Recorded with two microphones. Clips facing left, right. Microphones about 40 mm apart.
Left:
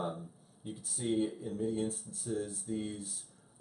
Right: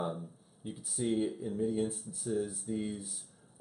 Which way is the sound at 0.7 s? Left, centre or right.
Centre.